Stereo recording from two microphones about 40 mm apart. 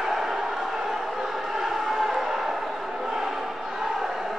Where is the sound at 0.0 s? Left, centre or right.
Centre.